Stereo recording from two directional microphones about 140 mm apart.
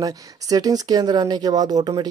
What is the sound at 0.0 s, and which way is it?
Speech, 25° right (ahead or behind).